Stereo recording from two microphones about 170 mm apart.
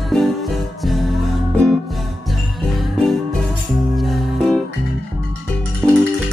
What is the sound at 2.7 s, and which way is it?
Music, centre (ahead or behind).